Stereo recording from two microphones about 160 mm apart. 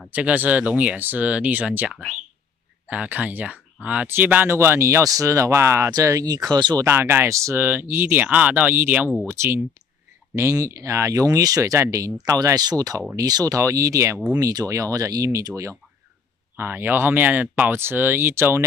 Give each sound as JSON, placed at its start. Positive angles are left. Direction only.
{"t": 0.1, "sound": "speech", "side_deg": -10}
{"t": 6.9, "sound": "speech", "side_deg": -15}